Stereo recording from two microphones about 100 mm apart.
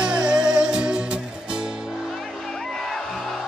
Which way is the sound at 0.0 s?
10° right (ahead or behind).